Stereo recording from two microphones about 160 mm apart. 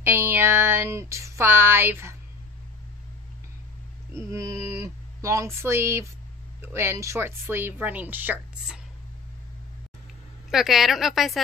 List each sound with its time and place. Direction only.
0.0 s a sound: 15° right (ahead or behind)
4.3 s speech: 20° right (ahead or behind)
10.5 s a woman's voice: centre (ahead or behind)